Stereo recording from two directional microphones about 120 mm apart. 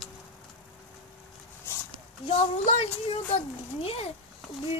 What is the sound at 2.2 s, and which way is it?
Speech, 60° left (ahead or behind).